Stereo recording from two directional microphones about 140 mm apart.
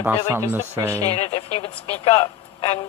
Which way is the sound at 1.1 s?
45° left (ahead or behind).